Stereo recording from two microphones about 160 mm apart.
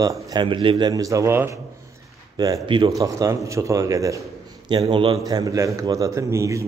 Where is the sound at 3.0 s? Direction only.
20° right (ahead or behind).